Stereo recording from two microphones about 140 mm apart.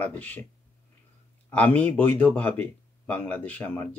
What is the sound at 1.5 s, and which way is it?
Speech, 10° left (ahead or behind).